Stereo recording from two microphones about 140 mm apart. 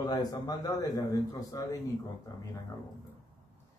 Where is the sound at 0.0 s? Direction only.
30° left (ahead or behind).